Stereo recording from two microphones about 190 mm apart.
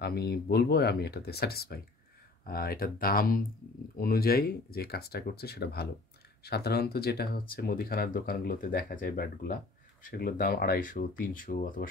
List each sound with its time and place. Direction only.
0.0 s speech: 55° left (ahead or behind)